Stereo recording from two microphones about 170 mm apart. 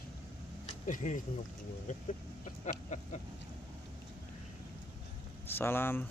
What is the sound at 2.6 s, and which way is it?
Vehicle, 45° left (ahead or behind).